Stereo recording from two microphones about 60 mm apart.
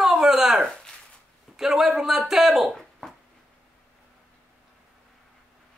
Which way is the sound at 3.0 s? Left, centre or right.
Centre.